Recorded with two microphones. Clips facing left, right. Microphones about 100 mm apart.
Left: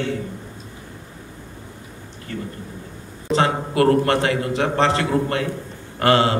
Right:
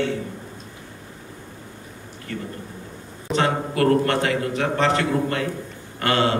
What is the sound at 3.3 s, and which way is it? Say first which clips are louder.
A man's voice: left 2 dB; 30° left (ahead or behind).